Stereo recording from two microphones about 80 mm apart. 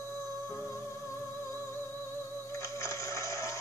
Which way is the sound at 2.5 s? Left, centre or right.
Left.